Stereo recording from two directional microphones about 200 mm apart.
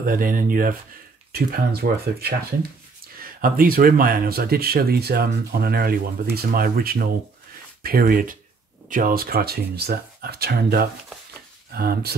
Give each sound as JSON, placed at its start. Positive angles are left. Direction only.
{"t": 0.0, "sound": "speech", "side_deg": -45}